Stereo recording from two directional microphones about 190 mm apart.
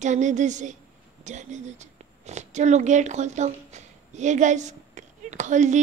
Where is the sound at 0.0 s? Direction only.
40° right (ahead or behind).